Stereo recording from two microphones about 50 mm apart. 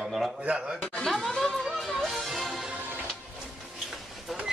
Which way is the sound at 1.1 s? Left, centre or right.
Centre.